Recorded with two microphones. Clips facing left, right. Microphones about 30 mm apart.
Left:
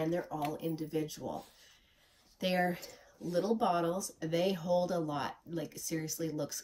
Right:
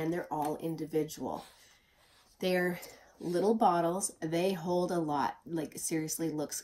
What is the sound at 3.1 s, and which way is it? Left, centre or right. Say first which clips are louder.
Speech: right 1 dB; right.